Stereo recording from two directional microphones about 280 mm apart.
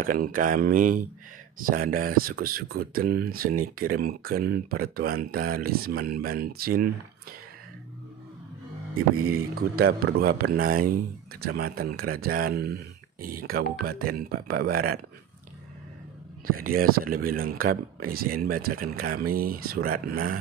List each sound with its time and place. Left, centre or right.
0.0 s speech: right
9.2 s speech: right
16.4 s speech: right